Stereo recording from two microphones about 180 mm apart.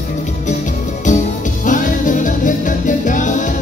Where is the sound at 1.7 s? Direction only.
45° left (ahead or behind).